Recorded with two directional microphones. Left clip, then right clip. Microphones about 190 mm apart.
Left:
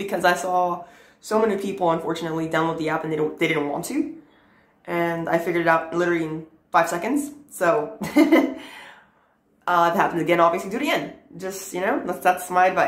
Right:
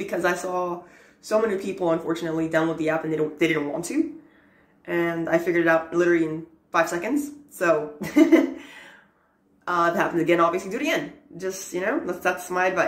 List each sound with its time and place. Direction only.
0.0 s speech: 15° left (ahead or behind)
4.8 s a woman's voice: 15° left (ahead or behind)